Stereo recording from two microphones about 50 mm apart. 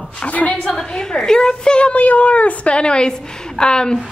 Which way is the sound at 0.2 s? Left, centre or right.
Left.